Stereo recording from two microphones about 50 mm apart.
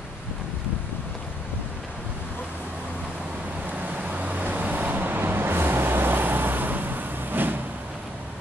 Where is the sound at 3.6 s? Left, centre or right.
Right.